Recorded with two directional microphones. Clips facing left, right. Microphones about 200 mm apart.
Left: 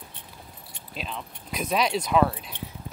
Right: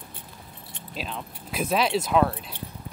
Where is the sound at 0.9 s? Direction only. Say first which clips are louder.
Right 1 dB; centre (ahead or behind).